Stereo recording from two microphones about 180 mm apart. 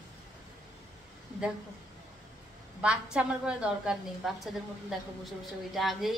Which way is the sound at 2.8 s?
5° right (ahead or behind).